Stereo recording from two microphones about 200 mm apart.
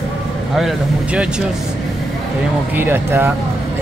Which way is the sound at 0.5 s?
5° right (ahead or behind).